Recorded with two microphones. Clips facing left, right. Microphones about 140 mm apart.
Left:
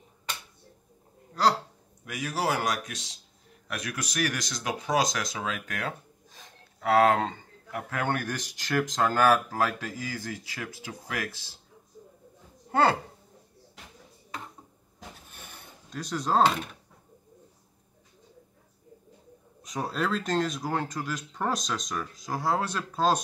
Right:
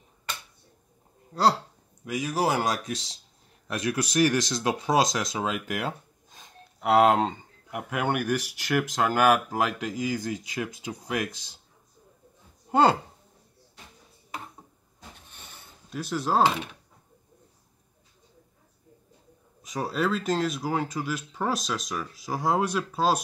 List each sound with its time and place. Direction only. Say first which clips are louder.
2.0 s speech: right 3 dB; 20° right (ahead or behind)
15.9 s speech: right 1 dB; 5° right (ahead or behind)
19.6 s speech: right 3 dB; centre (ahead or behind)